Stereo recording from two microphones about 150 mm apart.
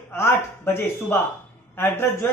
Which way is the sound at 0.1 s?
15° left (ahead or behind).